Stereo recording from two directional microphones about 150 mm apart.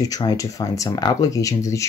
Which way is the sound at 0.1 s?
25° left (ahead or behind).